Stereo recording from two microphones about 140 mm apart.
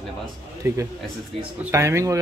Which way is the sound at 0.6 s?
20° right (ahead or behind).